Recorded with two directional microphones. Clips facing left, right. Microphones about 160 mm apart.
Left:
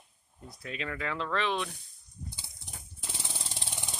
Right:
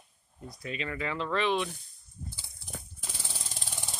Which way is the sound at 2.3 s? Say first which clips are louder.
Even; 20° left (ahead or behind).